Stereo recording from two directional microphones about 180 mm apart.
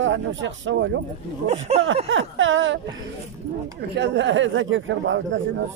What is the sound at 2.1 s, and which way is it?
Speech, 90° right.